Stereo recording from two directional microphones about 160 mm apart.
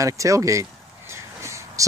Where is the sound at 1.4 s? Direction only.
20° right (ahead or behind).